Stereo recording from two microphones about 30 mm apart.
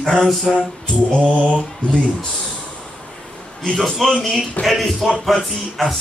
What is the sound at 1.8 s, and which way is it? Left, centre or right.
Speech, left.